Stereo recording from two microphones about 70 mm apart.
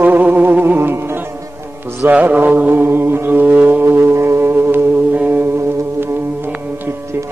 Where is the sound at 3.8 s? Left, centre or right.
Right.